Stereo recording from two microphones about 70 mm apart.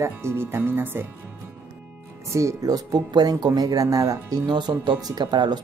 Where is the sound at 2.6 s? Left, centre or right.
Right.